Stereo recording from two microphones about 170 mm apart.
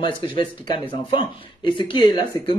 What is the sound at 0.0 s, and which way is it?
Speech, 30° left (ahead or behind).